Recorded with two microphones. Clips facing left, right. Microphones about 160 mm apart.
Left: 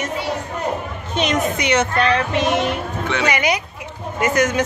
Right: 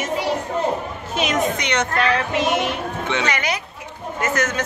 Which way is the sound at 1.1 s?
5° right (ahead or behind).